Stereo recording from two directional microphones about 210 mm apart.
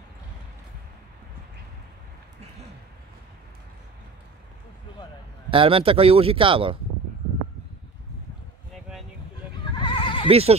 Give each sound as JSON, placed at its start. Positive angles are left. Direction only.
{"t": 5.5, "sound": "a man's voice", "side_deg": -25}
{"t": 9.7, "sound": "neigh", "side_deg": 20}
{"t": 10.2, "sound": "speech", "side_deg": -30}